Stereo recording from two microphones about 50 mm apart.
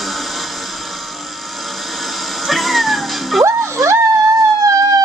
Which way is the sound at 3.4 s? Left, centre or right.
Right.